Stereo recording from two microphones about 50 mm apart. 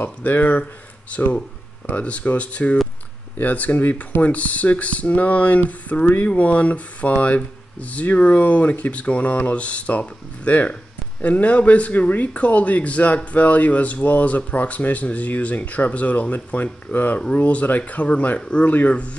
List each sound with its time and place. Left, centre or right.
0.0 s speech: left